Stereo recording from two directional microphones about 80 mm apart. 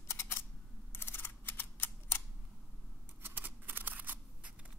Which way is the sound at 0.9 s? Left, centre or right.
Left.